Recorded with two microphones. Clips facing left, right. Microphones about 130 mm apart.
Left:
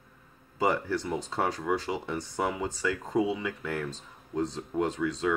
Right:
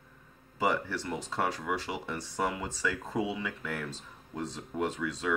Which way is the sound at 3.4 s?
Centre (ahead or behind).